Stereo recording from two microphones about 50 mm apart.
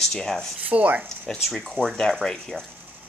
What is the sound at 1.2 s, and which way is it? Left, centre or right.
Speech, centre.